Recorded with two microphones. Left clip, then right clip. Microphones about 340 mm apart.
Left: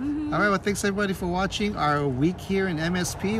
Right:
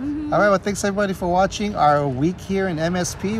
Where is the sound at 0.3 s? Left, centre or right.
Centre.